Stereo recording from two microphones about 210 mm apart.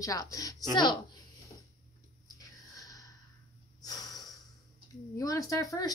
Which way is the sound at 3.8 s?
15° left (ahead or behind).